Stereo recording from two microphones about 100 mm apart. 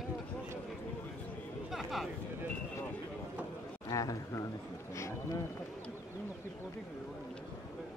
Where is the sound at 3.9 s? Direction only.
35° left (ahead or behind).